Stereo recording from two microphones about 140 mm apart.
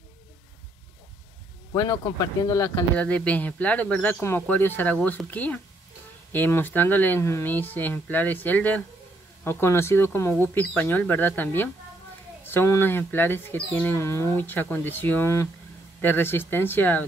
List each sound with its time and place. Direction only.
1.7 s speech: 25° left (ahead or behind)
3.0 s speech: 10° left (ahead or behind)